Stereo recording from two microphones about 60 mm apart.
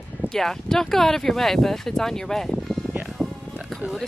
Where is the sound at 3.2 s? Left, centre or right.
Centre.